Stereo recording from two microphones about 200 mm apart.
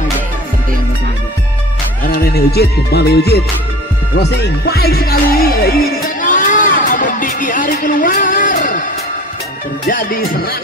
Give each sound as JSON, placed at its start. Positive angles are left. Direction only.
{"t": 2.0, "sound": "music", "side_deg": 50}
{"t": 4.2, "sound": "speech", "side_deg": 55}
{"t": 6.2, "sound": "a sound", "side_deg": 40}
{"t": 9.8, "sound": "speech", "side_deg": 45}